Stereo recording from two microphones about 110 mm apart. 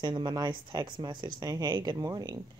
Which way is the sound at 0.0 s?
40° right (ahead or behind).